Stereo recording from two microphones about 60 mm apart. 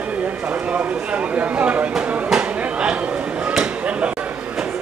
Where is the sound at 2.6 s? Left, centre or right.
Centre.